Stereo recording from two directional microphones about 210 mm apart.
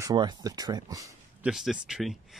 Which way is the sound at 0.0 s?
20° right (ahead or behind).